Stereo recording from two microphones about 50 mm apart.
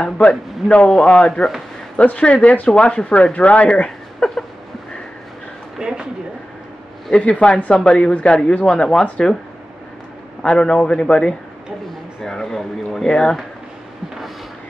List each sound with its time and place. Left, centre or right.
0.2 s a man's voice: left
5.8 s speech: centre
7.1 s speech: centre
10.4 s speech: centre